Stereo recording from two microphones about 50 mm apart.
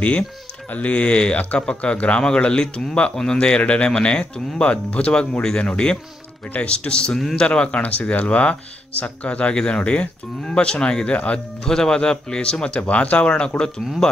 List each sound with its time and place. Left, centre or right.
0.7 s speech: left
11.6 s speech: centre
12.8 s speech: left
14.0 s speech: centre